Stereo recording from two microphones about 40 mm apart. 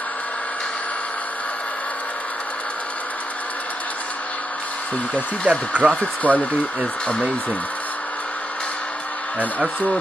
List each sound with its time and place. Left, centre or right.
5.5 s speech: right
5.9 s speech: left